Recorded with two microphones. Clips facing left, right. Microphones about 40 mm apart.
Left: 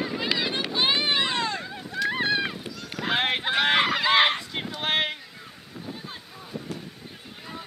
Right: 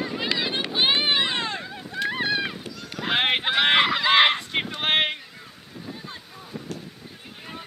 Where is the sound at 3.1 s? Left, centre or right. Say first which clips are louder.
Right 3 dB; right.